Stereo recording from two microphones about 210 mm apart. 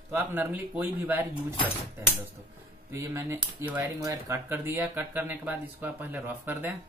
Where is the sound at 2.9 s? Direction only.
10° right (ahead or behind).